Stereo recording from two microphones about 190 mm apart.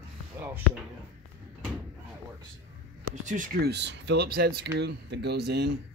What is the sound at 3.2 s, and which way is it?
Speech, 45° right (ahead or behind).